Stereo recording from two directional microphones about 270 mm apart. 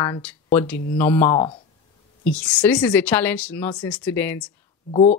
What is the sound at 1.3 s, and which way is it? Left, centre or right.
Speech, left.